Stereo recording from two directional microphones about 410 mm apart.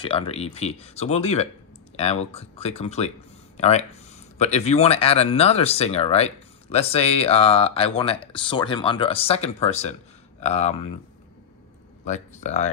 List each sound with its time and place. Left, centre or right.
0.0 s speech: centre
12.1 s speech: centre